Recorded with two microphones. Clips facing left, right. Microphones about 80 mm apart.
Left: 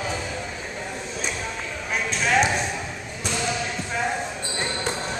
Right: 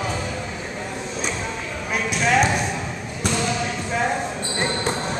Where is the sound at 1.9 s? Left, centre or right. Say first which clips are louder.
Right 2 dB; centre.